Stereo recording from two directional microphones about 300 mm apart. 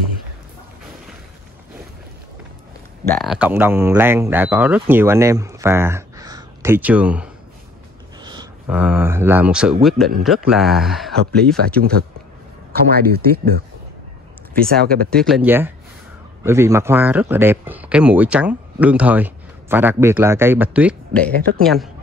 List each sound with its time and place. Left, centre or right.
3.1 s speech: centre
12.9 s speech: right
14.7 s speech: right
15.1 s speech: centre